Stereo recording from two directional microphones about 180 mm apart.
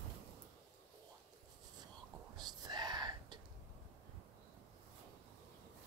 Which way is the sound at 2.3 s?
25° right (ahead or behind).